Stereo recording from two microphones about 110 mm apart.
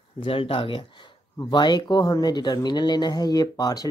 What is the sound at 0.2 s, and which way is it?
Speech, 55° left (ahead or behind).